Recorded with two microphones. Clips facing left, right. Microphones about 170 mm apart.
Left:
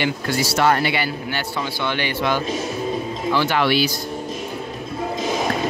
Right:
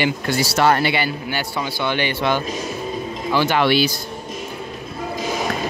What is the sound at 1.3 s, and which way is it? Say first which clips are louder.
Speech: right 1 dB; 10° right (ahead or behind).